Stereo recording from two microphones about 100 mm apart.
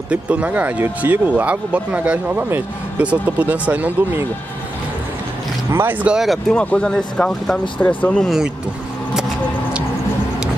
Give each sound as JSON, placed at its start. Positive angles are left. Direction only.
{"t": 0.1, "sound": "speech", "side_deg": -15}
{"t": 5.7, "sound": "speech", "side_deg": -20}
{"t": 6.2, "sound": "speech", "side_deg": 5}